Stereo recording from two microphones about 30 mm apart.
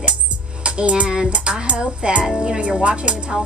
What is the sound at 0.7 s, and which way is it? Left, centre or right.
Music, right.